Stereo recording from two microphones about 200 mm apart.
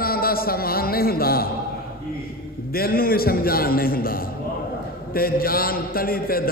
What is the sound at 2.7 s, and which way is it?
A man's voice, 50° left (ahead or behind).